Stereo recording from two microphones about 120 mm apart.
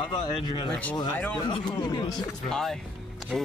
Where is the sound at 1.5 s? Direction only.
35° left (ahead or behind).